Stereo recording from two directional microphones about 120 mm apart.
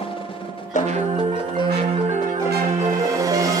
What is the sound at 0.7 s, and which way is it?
Music, 90° left.